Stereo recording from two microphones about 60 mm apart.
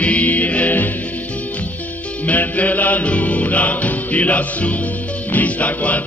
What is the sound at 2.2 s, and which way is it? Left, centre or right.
Music, left.